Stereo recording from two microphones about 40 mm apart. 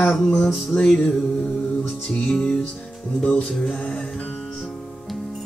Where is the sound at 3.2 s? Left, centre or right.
Left.